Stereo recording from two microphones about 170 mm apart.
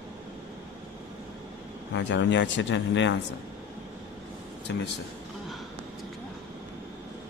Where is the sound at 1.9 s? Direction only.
90° left.